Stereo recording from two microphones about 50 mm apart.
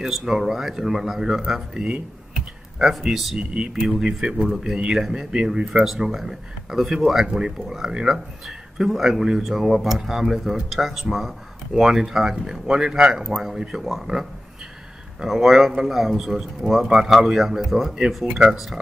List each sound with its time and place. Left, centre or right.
0.0 s speech: centre
2.3 s computer keyboard: centre
4.0 s speech: centre
5.3 s speech: centre
15.2 s speech: centre